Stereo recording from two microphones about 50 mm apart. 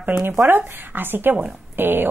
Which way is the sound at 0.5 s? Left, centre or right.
Right.